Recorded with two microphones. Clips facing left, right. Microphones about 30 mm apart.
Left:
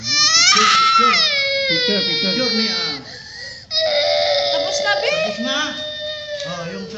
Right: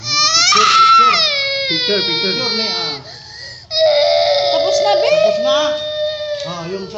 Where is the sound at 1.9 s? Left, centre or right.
Right.